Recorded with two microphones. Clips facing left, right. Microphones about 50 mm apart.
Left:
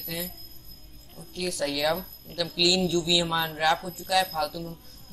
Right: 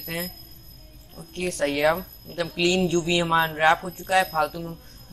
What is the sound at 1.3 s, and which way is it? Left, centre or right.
A woman's voice, right.